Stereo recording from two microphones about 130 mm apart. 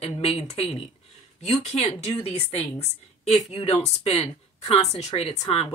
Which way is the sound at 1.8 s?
50° left (ahead or behind).